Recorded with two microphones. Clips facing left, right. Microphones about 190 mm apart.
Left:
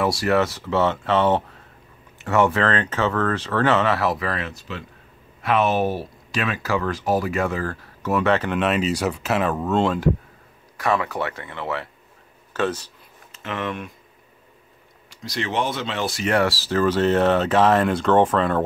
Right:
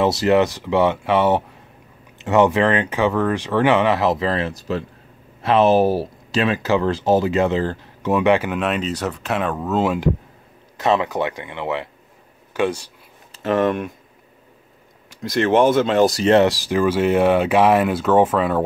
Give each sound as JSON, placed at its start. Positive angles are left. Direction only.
{"t": 0.0, "sound": "speech", "side_deg": -20}
{"t": 8.5, "sound": "speech", "side_deg": 0}
{"t": 10.8, "sound": "speech", "side_deg": -20}
{"t": 13.3, "sound": "speech", "side_deg": -40}
{"t": 15.2, "sound": "speech", "side_deg": -50}
{"t": 16.3, "sound": "speech", "side_deg": -20}